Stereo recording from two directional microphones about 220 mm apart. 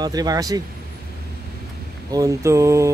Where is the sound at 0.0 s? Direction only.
15° right (ahead or behind).